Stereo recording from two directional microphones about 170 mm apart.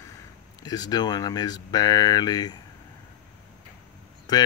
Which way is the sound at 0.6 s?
25° left (ahead or behind).